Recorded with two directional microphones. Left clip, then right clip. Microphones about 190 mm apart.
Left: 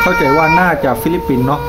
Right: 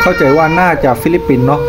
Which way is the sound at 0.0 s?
15° right (ahead or behind).